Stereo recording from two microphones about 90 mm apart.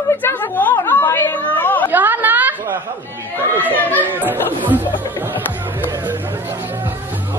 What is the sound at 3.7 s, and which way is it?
Speech, 20° right (ahead or behind).